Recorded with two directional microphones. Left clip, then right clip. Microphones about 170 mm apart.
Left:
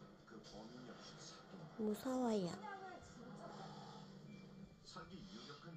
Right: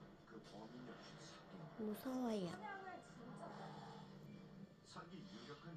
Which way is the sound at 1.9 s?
50° left (ahead or behind).